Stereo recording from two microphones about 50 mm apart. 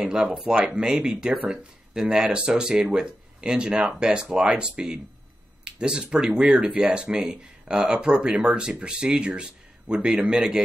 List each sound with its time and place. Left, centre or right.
0.0 s speech: right
6.9 s speech: centre